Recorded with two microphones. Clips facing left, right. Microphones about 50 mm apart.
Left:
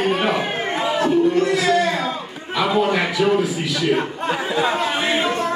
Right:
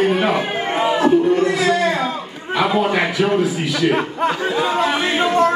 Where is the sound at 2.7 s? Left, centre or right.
Centre.